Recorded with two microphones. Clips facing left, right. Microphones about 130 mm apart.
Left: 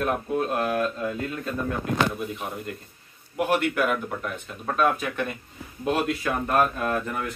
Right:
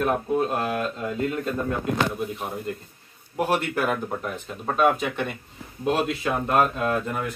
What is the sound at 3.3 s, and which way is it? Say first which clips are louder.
Speech: left 1 dB; 30° right (ahead or behind).